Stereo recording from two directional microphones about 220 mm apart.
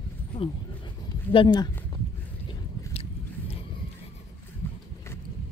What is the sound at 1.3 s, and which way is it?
Speech, 20° left (ahead or behind).